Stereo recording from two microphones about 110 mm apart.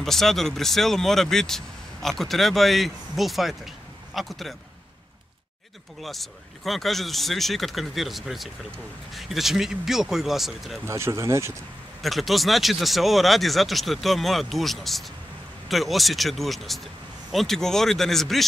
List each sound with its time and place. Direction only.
0.0 s speech: 5° left (ahead or behind)
6.0 s speech: centre (ahead or behind)
10.9 s speech: 25° right (ahead or behind)
12.0 s speech: centre (ahead or behind)